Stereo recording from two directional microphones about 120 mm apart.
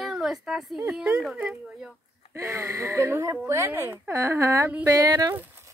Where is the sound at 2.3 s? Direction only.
25° right (ahead or behind).